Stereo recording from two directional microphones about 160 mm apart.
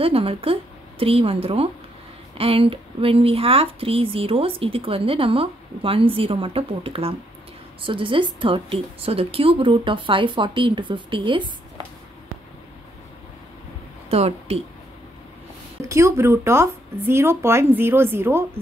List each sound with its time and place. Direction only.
0.0 s a woman's voice: 35° right (ahead or behind)
14.1 s speech: 40° right (ahead or behind)
15.9 s speech: 20° right (ahead or behind)